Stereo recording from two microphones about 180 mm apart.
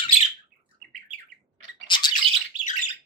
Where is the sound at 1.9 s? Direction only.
25° left (ahead or behind).